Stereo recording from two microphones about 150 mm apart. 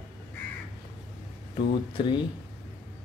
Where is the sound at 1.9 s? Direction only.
30° left (ahead or behind).